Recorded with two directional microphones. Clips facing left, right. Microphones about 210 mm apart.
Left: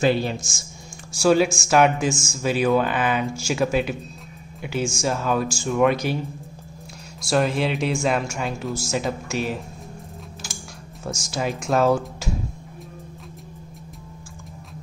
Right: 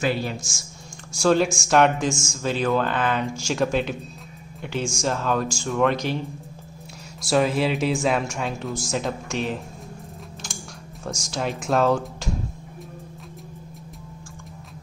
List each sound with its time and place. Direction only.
0.0 s speech: 25° left (ahead or behind)
1.1 s speech: 5° left (ahead or behind)
7.2 s speech: centre (ahead or behind)
10.4 s a sound: 5° left (ahead or behind)
11.1 s speech: 5° left (ahead or behind)